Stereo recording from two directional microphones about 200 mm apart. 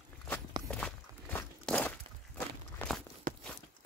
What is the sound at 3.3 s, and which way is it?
Walk, 45° right (ahead or behind).